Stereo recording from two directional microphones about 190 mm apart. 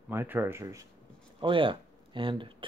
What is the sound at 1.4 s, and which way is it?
Speech, 25° right (ahead or behind).